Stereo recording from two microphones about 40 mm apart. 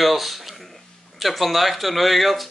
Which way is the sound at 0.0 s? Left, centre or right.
Centre.